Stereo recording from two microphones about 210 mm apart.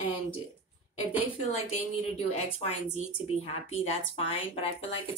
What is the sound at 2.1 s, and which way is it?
A woman's voice, 30° left (ahead or behind).